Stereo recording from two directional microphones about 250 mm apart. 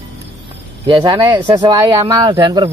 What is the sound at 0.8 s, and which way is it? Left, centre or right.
Speech, centre.